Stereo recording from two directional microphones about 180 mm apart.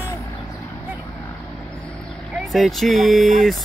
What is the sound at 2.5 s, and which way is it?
Speech, centre (ahead or behind).